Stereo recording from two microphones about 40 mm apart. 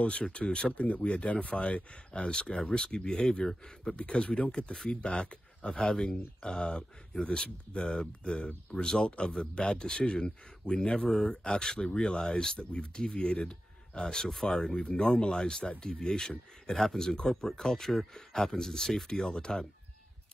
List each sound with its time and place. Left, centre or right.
0.0 s speech: left
3.9 s speech: left
12.5 s speech: left; by 14.8 s centre
14.8 s speech: left